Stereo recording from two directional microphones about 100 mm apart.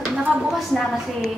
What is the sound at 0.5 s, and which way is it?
Speech, centre (ahead or behind).